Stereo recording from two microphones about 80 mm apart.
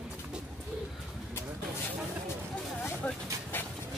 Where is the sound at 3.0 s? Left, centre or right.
Centre.